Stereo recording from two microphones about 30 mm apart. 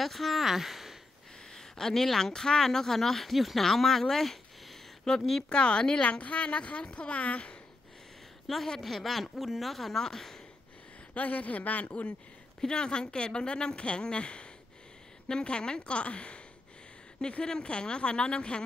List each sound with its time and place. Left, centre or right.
0.0 s speech: centre
1.5 s a sound: centre
2.0 s speech: centre
3.3 s speech: centre
3.6 s speech: centre
5.1 s speech: centre
5.5 s speech: left
6.0 s a woman's voice: left
6.8 s speech: left
7.1 s a woman's voice: left
8.5 s speech: centre
11.1 s a woman's voice: left
12.6 s speech: left
17.5 s speech: left